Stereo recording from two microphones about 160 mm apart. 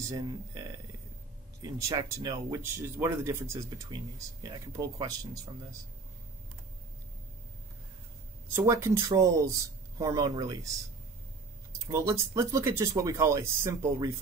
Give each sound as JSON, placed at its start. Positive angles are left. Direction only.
{"t": 0.1, "sound": "speech", "side_deg": -20}
{"t": 8.5, "sound": "speech", "side_deg": -20}
{"t": 11.9, "sound": "speech", "side_deg": -20}